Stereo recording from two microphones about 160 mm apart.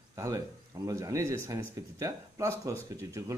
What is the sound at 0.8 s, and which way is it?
Speech, 20° right (ahead or behind).